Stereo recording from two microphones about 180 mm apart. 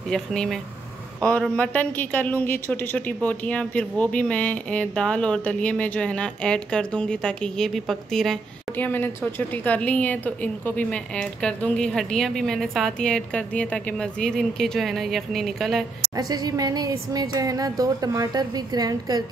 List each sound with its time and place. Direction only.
0.1 s a woman's voice: 5° left (ahead or behind)
16.2 s speech: 20° right (ahead or behind)